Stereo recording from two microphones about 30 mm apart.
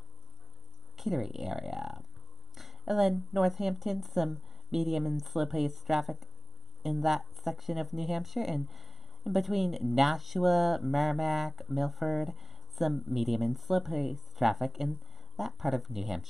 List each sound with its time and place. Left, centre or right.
0.9 s speech: centre